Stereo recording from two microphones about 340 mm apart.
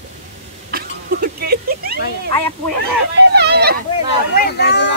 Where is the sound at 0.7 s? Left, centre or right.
Right.